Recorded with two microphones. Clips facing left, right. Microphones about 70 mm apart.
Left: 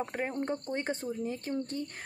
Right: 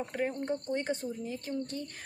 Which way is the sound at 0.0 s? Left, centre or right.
Left.